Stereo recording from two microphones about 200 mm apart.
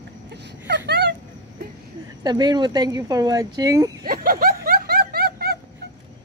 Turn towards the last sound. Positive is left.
turn(degrees=-50)  # may be behind; listen again after turning